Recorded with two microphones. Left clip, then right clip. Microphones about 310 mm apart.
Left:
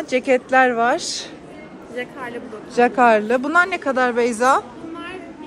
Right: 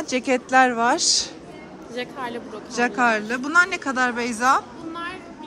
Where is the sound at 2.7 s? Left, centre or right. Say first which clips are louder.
Left 6 dB; centre.